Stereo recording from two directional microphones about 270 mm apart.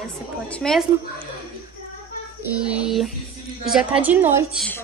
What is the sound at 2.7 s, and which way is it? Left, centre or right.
A woman's voice, centre.